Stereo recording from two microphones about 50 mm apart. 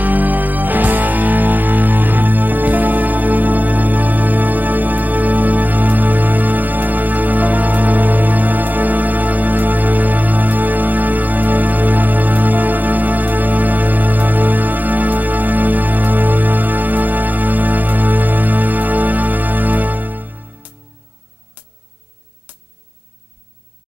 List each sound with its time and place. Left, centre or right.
0.0 s music: right
21.6 s music: right